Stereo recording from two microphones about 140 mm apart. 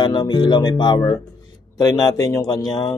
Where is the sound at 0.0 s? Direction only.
30° left (ahead or behind).